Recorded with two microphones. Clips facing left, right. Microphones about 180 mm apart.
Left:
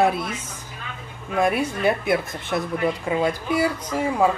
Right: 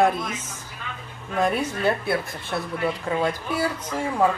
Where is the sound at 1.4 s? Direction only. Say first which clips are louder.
Left 2 dB; 10° left (ahead or behind).